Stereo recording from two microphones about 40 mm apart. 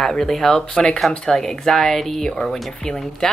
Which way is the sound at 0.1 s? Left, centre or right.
Centre.